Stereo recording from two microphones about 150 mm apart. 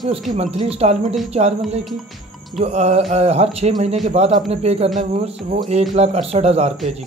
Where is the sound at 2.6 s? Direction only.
45° right (ahead or behind).